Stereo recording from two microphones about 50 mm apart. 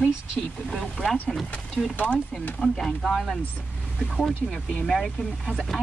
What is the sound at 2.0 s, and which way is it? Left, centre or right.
Speech, left.